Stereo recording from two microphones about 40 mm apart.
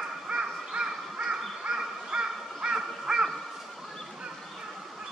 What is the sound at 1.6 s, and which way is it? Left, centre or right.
Crow, right.